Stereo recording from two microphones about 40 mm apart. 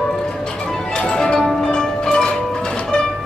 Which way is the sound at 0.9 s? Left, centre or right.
Centre.